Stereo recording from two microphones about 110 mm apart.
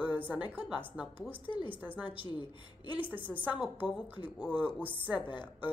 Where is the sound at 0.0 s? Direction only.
15° right (ahead or behind).